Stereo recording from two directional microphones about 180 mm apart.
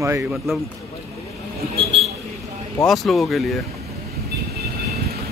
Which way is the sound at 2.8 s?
Centre (ahead or behind).